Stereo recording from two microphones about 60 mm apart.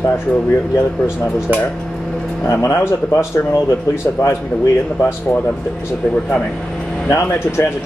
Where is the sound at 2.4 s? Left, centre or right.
Left.